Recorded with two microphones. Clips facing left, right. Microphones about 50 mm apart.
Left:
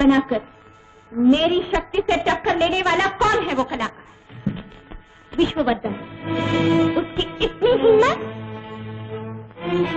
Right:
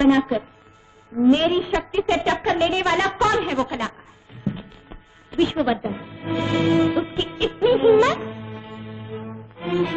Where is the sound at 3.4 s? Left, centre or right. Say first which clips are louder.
Left 1 dB; centre.